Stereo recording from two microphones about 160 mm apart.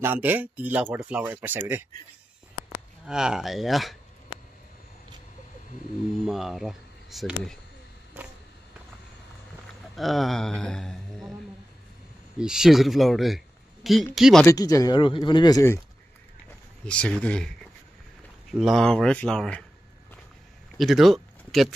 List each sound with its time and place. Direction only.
0.0 s speech: 10° right (ahead or behind)
3.1 s speech: 5° right (ahead or behind)
6.2 s speech: centre (ahead or behind)
9.9 s speech: centre (ahead or behind)
12.4 s speech: 5° right (ahead or behind)
14.4 s speech: 20° left (ahead or behind)
16.8 s speech: 5° left (ahead or behind)
20.7 s speech: centre (ahead or behind)